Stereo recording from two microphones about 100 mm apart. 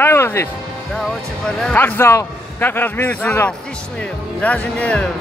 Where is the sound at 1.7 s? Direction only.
20° left (ahead or behind).